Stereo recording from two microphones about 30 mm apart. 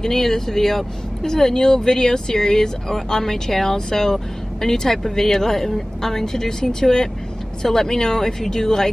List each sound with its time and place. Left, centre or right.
0.0 s speech: centre
1.2 s speech: centre